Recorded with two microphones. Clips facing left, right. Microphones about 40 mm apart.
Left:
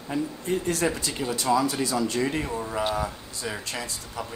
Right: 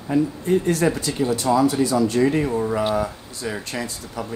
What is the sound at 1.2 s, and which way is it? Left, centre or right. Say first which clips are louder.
Speech: right 9 dB; right.